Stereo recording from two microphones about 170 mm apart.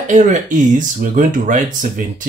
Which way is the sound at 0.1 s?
50° right (ahead or behind).